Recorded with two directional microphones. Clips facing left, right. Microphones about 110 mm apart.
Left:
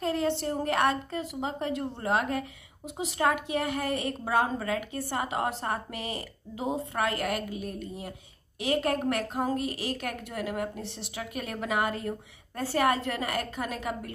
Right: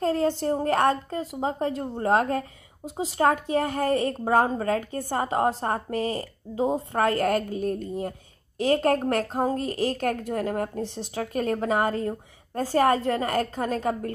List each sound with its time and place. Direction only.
0.0 s a sound: 40° right (ahead or behind)
0.5 s a woman's voice: 30° right (ahead or behind)
3.5 s a woman's voice: 45° right (ahead or behind)
9.1 s a woman's voice: 35° right (ahead or behind)